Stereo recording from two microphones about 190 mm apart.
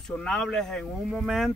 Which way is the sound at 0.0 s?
5° left (ahead or behind).